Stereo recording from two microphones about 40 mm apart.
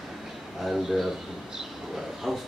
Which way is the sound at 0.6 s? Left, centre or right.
Centre.